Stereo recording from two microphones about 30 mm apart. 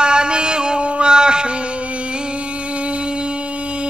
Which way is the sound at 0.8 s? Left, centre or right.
Right.